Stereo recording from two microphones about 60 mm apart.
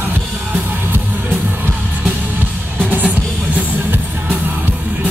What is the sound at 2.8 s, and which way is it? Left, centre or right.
Music, right.